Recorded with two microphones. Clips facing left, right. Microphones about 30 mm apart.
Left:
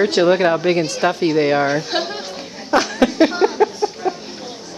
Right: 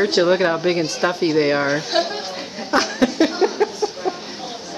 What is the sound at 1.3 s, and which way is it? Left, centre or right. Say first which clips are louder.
Speech: left 2 dB; centre.